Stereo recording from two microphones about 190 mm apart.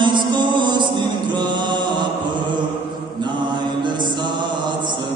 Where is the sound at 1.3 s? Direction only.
25° right (ahead or behind).